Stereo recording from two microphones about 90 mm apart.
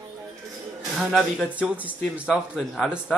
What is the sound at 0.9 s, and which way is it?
Speech, 5° right (ahead or behind).